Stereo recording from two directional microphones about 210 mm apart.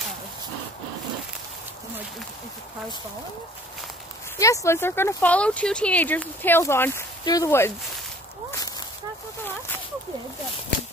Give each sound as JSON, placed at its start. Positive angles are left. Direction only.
{"t": 4.4, "sound": "speech", "side_deg": 15}